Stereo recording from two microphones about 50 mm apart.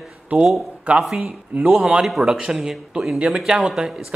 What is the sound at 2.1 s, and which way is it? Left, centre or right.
A man's voice, centre.